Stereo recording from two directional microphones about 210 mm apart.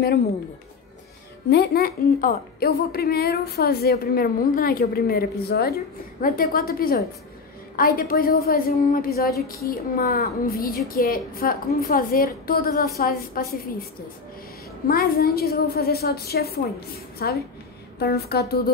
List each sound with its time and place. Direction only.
1.5 s a woman's voice: 50° left (ahead or behind)
14.9 s a woman's voice: 45° left (ahead or behind)